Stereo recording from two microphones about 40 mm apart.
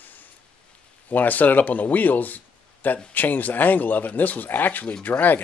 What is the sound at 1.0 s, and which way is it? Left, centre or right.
Speech, left.